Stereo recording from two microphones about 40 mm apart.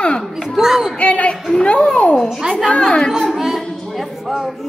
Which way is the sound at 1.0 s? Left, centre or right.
Left.